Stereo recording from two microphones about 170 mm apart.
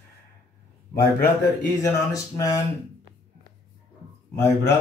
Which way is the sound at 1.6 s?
20° left (ahead or behind).